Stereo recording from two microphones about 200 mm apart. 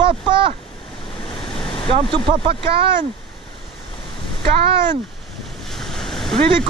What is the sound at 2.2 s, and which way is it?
Speech, 25° right (ahead or behind).